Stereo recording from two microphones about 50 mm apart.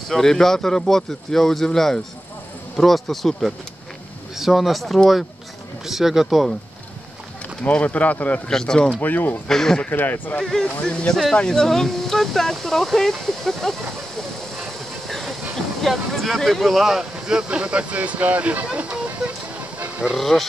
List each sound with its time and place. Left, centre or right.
0.1 s speech: centre
7.6 s speech: left
8.5 s speech: centre
9.0 s speech: left
9.5 s speech: centre
9.8 s speech: left
10.6 s speech: left; by 13.7 s centre
15.0 s speech: centre; by 19.3 s right
20.2 s speech: centre